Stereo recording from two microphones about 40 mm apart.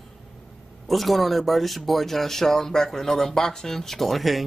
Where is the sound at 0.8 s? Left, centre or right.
Centre.